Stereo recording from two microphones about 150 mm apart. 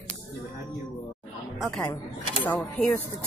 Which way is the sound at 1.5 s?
5° left (ahead or behind).